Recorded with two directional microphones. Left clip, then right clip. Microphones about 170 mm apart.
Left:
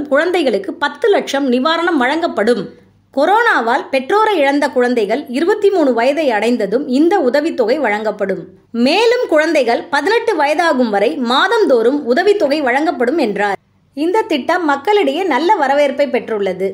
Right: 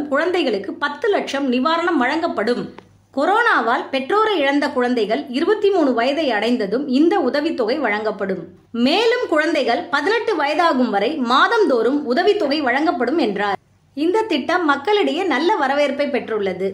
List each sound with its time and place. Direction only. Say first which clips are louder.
0.1 s a woman's voice: left 5 dB; 40° left (ahead or behind)
3.2 s speech: left 4 dB; 30° left (ahead or behind)